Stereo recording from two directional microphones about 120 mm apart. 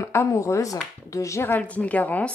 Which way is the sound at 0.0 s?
20° left (ahead or behind).